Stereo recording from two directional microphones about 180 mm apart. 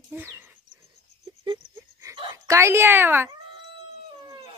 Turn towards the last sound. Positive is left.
turn(degrees=-10)  # may be behind; listen again after turning